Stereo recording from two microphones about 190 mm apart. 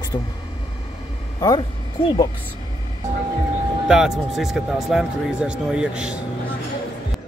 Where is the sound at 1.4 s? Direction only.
25° left (ahead or behind).